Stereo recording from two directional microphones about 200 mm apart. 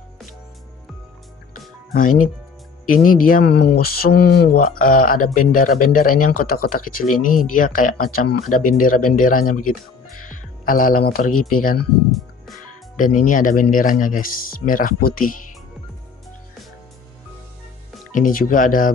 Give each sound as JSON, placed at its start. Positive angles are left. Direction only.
{"t": 2.0, "sound": "speech", "side_deg": 40}
{"t": 12.9, "sound": "speech", "side_deg": 40}
{"t": 18.1, "sound": "speech", "side_deg": 45}